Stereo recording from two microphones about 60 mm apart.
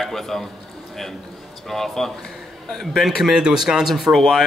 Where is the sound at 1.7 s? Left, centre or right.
Centre.